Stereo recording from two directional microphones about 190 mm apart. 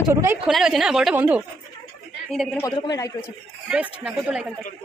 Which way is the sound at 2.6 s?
20° left (ahead or behind).